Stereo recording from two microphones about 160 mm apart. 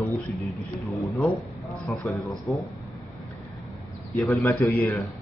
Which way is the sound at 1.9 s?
Centre (ahead or behind).